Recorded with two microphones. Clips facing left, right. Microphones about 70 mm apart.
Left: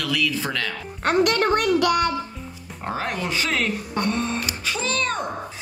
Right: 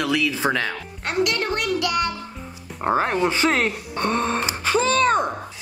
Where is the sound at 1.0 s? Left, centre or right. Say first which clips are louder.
Left 4 dB; left.